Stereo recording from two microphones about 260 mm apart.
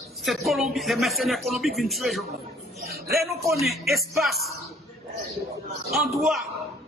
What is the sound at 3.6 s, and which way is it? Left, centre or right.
Speech, centre.